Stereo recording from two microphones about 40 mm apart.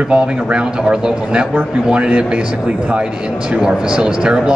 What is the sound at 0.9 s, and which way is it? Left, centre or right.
A man's voice, centre.